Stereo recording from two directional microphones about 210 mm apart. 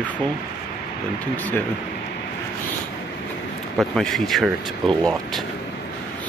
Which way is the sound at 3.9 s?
Centre (ahead or behind).